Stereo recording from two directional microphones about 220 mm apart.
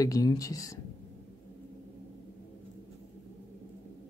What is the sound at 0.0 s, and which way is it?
Speech, 15° left (ahead or behind).